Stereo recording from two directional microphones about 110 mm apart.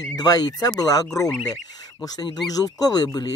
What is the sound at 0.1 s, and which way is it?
Speech, 35° left (ahead or behind).